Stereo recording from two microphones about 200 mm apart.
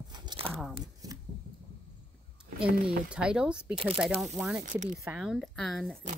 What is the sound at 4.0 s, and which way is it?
A woman's voice, centre (ahead or behind).